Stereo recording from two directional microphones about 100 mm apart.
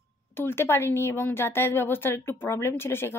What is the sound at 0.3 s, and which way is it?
A woman's voice, 25° left (ahead or behind).